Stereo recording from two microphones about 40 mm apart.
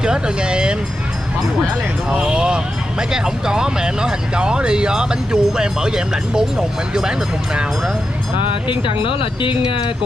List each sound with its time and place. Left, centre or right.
0.0 s speech: right
2.0 s speech: right